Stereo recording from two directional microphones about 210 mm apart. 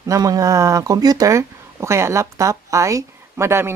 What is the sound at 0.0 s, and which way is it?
Speech, 15° right (ahead or behind).